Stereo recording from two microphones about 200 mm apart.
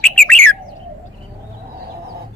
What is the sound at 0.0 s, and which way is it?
Bird, 5° left (ahead or behind).